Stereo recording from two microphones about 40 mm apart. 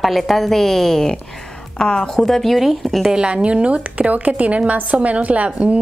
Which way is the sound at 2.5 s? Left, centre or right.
Centre.